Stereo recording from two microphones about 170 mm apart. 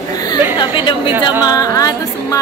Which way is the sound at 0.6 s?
30° left (ahead or behind).